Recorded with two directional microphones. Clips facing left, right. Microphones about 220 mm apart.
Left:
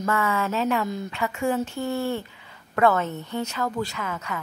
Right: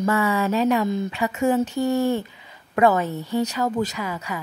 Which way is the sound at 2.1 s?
15° right (ahead or behind).